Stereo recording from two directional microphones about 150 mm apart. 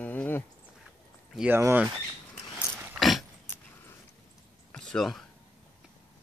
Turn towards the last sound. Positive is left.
turn(degrees=5)  # may be behind; listen again after turning